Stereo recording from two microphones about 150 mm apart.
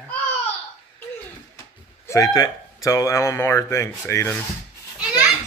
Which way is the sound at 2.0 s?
20° left (ahead or behind).